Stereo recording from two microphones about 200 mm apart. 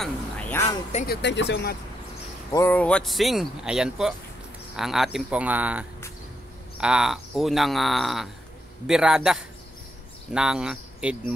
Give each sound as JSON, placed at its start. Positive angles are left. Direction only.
{"t": 0.0, "sound": "a sound", "side_deg": 10}
{"t": 1.0, "sound": "speech", "side_deg": 55}
{"t": 2.5, "sound": "speech", "side_deg": 10}